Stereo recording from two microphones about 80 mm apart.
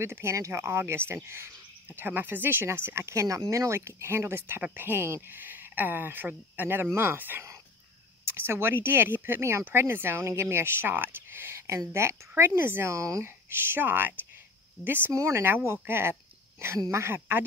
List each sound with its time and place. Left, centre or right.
0.0 s speech: right
15.1 s speech: right